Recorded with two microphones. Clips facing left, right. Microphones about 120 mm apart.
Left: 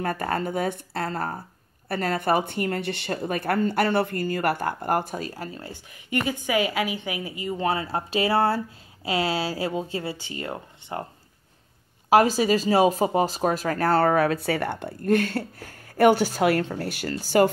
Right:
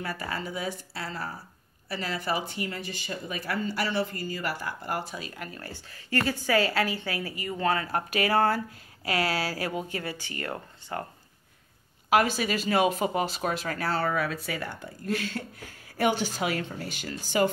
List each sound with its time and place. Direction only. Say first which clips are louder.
0.0 s speech: left 7 dB; 50° left (ahead or behind)
5.3 s a woman's voice: left 4 dB; 30° left (ahead or behind)
12.1 s speech: left 6 dB; 35° left (ahead or behind); by 17.2 s 55° left (ahead or behind)